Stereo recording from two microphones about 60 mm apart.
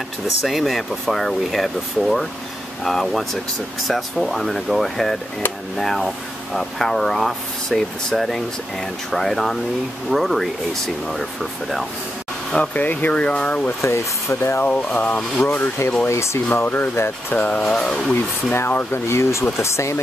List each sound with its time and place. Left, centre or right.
0.5 s speech: centre
12.5 s speech: left
13.7 s speech: left
14.7 s speech: left
15.4 s speech: left
16.1 s speech: left
16.6 s speech: left
17.3 s speech: left
17.6 s speech: centre
18.5 s speech: left
19.0 s speech: left